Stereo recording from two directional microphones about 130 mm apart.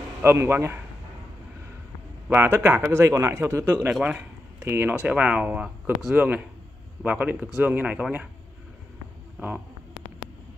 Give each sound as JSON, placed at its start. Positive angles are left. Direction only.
{"t": 0.2, "sound": "a man's voice", "side_deg": -20}
{"t": 2.2, "sound": "speech", "side_deg": -15}